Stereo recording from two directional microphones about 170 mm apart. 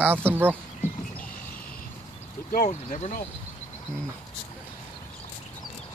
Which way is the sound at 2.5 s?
50° left (ahead or behind).